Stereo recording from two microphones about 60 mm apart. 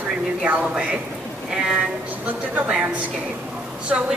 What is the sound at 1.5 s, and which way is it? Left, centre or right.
Speech, centre.